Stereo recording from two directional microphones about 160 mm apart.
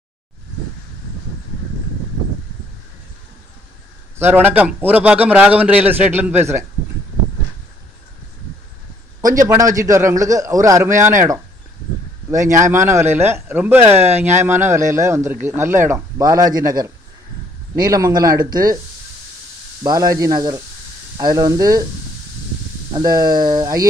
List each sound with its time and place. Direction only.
4.2 s a man's voice: 10° right (ahead or behind)
9.3 s a man's voice: 20° right (ahead or behind)
19.8 s a man's voice: 20° right (ahead or behind)
22.9 s a man's voice: 25° right (ahead or behind)